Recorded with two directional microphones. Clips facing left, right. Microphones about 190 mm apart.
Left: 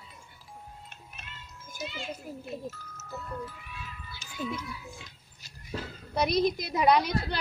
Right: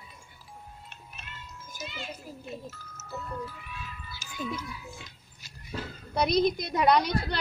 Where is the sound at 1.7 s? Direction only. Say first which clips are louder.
Left 3 dB; 50° left (ahead or behind).